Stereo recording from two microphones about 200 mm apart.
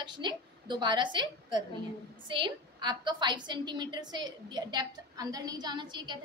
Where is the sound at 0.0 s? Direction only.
20° right (ahead or behind).